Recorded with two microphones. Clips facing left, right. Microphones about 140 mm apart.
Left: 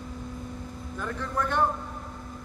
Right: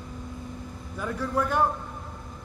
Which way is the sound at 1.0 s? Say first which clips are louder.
Right 3 dB; 10° right (ahead or behind).